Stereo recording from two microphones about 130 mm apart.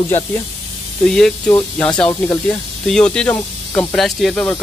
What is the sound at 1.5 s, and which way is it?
Speech, 15° left (ahead or behind).